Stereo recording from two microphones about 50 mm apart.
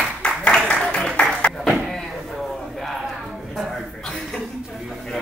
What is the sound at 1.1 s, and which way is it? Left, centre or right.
Music, left.